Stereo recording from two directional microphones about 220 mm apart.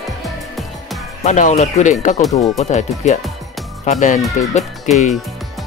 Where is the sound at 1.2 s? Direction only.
35° left (ahead or behind).